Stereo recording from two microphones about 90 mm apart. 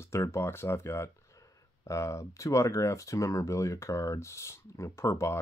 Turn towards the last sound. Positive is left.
turn(degrees=30)  # may be behind; listen again after turning